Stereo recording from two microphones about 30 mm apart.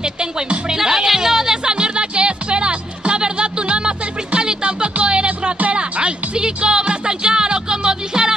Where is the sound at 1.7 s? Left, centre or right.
Right.